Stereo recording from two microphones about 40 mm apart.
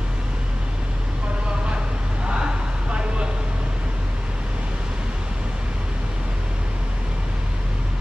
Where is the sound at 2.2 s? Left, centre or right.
Right.